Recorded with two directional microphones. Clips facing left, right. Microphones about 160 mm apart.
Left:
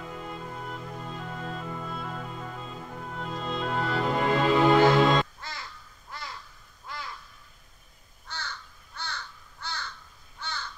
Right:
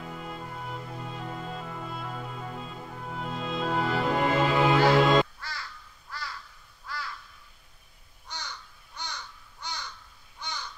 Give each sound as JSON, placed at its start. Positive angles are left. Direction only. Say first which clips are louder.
{"t": 0.2, "sound": "music", "louder": "left 1 dB", "side_deg": -5}
{"t": 3.2, "sound": "music", "louder": "right 1 dB", "side_deg": 0}
{"t": 5.4, "sound": "crow", "louder": "even", "side_deg": 20}
{"t": 8.3, "sound": "crow", "louder": "left 1 dB", "side_deg": -15}